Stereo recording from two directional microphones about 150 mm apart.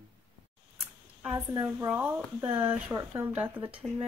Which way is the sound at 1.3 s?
25° right (ahead or behind).